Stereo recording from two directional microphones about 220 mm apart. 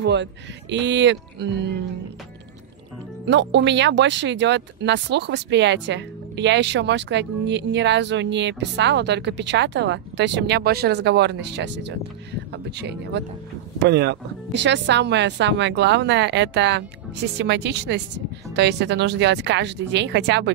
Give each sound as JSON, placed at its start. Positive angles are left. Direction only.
{"t": 0.0, "sound": "speech", "side_deg": -55}
{"t": 3.3, "sound": "speech", "side_deg": -50}